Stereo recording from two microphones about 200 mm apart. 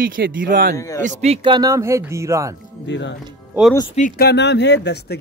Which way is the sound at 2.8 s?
65° left (ahead or behind).